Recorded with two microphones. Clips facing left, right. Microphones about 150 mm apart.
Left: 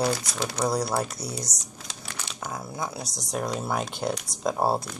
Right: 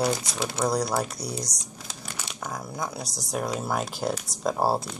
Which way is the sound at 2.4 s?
5° left (ahead or behind).